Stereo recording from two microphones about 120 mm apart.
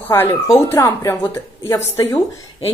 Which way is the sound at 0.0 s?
20° left (ahead or behind).